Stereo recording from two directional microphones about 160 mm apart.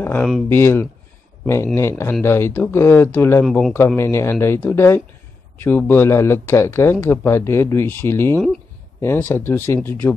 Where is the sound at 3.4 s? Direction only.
5° left (ahead or behind).